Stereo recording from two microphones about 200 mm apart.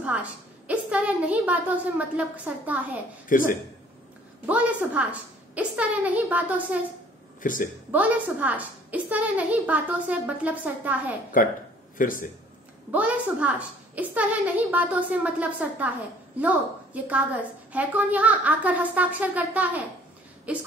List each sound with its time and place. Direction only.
0.0 s a woman's voice: 5° right (ahead or behind)
3.3 s a man's voice: 40° left (ahead or behind)
4.5 s a woman's voice: 5° right (ahead or behind)
7.4 s a man's voice: 40° left (ahead or behind)
7.9 s a woman's voice: 10° right (ahead or behind)
11.4 s a man's voice: 40° left (ahead or behind)
12.9 s a woman's voice: 5° right (ahead or behind)